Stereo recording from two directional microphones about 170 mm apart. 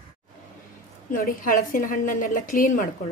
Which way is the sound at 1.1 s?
55° left (ahead or behind).